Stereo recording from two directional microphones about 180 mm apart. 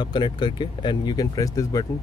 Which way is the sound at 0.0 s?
25° left (ahead or behind).